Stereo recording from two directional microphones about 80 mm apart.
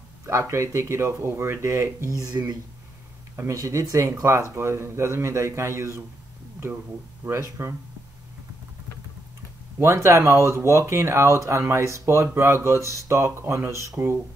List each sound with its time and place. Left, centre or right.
0.3 s speech: right
3.3 s speech: right
7.2 s speech: right
9.8 s speech: right